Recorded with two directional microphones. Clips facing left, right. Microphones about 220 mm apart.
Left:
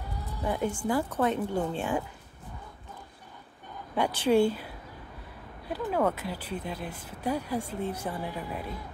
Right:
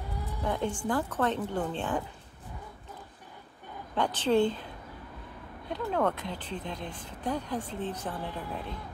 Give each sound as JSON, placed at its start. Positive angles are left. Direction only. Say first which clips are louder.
{"t": 0.4, "sound": "speech", "louder": "left 2 dB", "side_deg": 5}
{"t": 3.9, "sound": "a woman's voice", "louder": "left 2 dB", "side_deg": 10}